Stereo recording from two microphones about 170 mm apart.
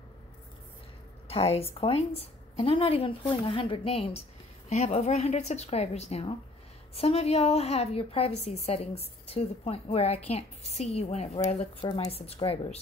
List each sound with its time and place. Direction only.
1.2 s a woman's voice: 35° left (ahead or behind)